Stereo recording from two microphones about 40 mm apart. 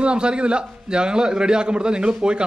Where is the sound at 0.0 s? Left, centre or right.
Right.